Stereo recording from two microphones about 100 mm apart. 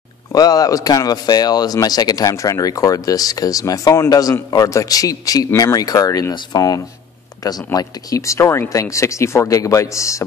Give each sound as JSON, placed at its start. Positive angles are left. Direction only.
{"t": 0.3, "sound": "speech", "side_deg": 40}